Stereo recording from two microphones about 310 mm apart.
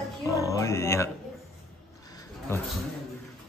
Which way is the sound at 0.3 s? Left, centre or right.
Centre.